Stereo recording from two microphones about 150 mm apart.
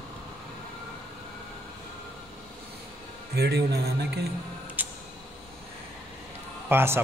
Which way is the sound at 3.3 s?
90° right.